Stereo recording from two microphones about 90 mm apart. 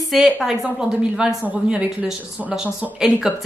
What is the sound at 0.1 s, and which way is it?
A woman's voice, 5° right (ahead or behind).